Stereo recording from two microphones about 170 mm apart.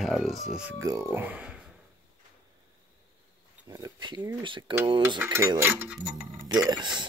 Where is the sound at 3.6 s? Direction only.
25° right (ahead or behind).